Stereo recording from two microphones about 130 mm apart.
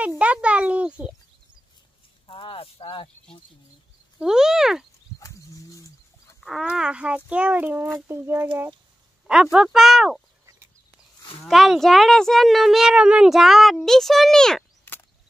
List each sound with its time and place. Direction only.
0.2 s a child's voice: 10° right (ahead or behind)
2.2 s speech: 45° left (ahead or behind)
4.2 s speech: 5° right (ahead or behind)
6.4 s speech: 5° right (ahead or behind); by 8.5 s 20° right (ahead or behind)
9.3 s speech: 5° right (ahead or behind)
11.4 s speech: centre (ahead or behind)